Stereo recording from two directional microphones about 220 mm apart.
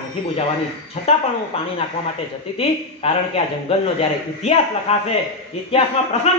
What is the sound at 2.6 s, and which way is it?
Speech, 25° left (ahead or behind).